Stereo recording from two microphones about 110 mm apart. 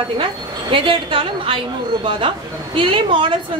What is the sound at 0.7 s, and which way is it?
Speech, 50° right (ahead or behind).